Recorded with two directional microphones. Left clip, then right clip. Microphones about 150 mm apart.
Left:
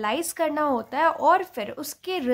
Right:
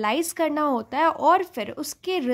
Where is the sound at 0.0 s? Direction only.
30° right (ahead or behind).